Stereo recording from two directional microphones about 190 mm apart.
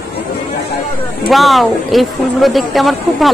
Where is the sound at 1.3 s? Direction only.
Centre (ahead or behind).